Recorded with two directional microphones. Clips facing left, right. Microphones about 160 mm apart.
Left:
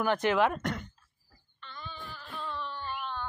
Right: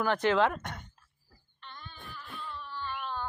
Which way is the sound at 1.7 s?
90° left.